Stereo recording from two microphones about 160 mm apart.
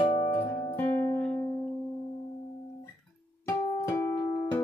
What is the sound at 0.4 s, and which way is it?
Music, 20° left (ahead or behind).